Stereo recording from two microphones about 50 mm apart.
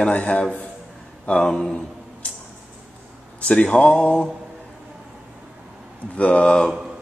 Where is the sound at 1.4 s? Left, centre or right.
Centre.